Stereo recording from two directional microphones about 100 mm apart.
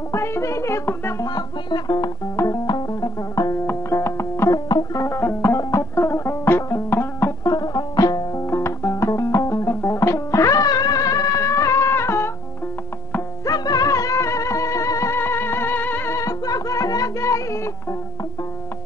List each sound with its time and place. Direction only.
0.1 s music: 25° left (ahead or behind)
1.2 s music: 40° left (ahead or behind)
3.6 s music: 25° left (ahead or behind)
4.6 s music: 40° left (ahead or behind)
5.1 s music: 25° left (ahead or behind)
7.4 s music: 40° left (ahead or behind)
8.5 s music: 25° left (ahead or behind)
13.5 s music: 40° left (ahead or behind)